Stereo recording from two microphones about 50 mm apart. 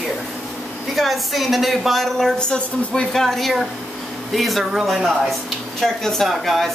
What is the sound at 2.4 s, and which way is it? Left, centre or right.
Speech, centre.